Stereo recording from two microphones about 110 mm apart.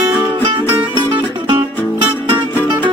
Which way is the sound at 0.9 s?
45° right (ahead or behind).